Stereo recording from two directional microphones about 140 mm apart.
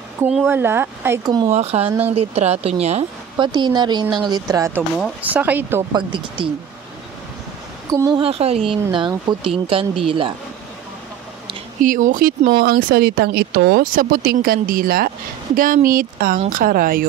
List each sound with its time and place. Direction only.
0.5 s speech: 15° right (ahead or behind)
1.5 s a woman's voice: 50° right (ahead or behind)
1.9 s speech: 15° right (ahead or behind)
2.1 s a woman's voice: 50° right (ahead or behind)
3.3 s speech: 30° right (ahead or behind)
5.2 s speech: 10° right (ahead or behind)
5.9 s speech: 35° right (ahead or behind)
7.9 s speech: 30° right (ahead or behind)
8.2 s speech: 45° right (ahead or behind)
11.8 s speech: 70° right (ahead or behind); by 17.0 s 90° right